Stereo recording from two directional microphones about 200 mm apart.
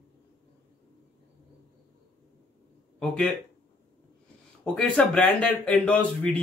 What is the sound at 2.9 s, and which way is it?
Speech, 5° left (ahead or behind).